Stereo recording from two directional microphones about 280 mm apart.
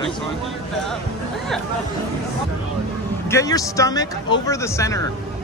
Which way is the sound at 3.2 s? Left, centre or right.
Centre.